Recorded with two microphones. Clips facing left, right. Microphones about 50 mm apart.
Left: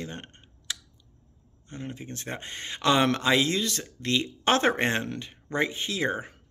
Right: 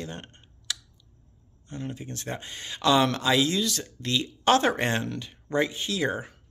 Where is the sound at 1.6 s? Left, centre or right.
Left.